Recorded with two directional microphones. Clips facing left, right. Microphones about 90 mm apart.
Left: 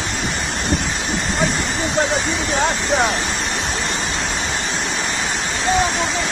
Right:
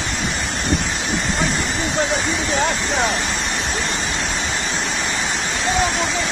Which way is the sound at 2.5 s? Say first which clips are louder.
Left 3 dB; 40° left (ahead or behind).